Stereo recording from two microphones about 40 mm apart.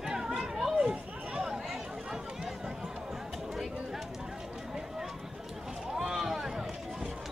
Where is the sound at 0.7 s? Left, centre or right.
Right.